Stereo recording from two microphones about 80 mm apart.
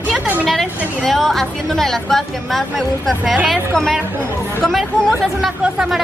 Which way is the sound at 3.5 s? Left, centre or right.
Centre.